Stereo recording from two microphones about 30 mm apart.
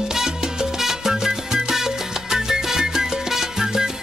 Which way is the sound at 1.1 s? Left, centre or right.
Centre.